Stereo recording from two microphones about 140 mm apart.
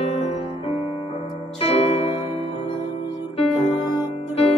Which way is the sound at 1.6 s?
45° left (ahead or behind).